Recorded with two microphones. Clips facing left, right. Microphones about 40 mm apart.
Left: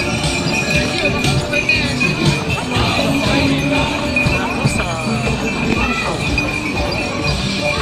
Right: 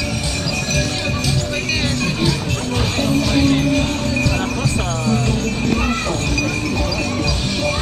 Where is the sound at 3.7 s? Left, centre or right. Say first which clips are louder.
Left 2 dB; left.